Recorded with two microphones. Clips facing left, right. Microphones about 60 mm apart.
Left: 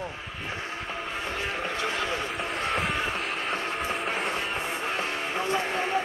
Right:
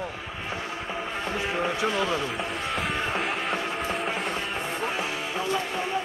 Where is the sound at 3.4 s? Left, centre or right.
Centre.